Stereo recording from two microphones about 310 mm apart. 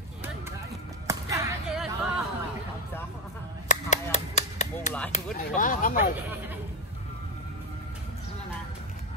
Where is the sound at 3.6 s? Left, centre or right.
Left.